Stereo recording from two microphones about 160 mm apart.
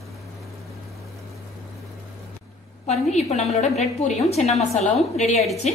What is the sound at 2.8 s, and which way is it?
A woman's voice, 45° left (ahead or behind).